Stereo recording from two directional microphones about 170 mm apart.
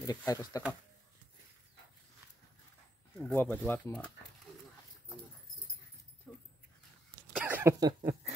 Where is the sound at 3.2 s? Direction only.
10° left (ahead or behind).